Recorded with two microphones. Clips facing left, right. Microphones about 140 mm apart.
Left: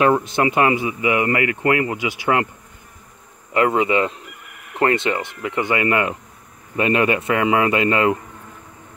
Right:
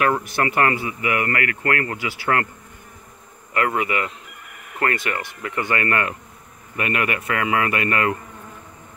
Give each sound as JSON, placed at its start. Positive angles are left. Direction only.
{"t": 0.0, "sound": "speech", "side_deg": 25}
{"t": 3.5, "sound": "speech", "side_deg": 25}